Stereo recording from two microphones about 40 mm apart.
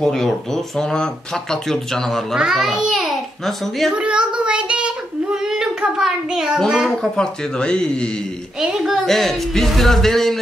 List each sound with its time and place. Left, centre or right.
0.0 s speech: centre
2.3 s a child's voice: centre
3.4 s speech: centre
3.9 s speech: right
5.3 s speech: centre
7.2 s speech: left
8.7 s a child's voice: centre
9.0 s speech: centre